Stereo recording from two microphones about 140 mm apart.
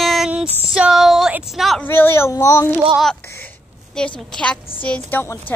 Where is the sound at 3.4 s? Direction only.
5° left (ahead or behind).